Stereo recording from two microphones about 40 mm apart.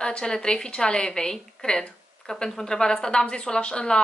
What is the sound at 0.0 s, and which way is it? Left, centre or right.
Speech, left.